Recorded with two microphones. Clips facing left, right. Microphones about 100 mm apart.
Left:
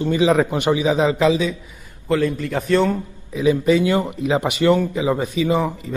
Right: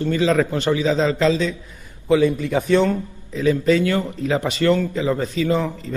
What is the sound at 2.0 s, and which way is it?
A man's voice, 5° right (ahead or behind).